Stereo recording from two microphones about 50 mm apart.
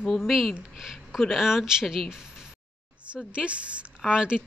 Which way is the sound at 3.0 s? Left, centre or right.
Right.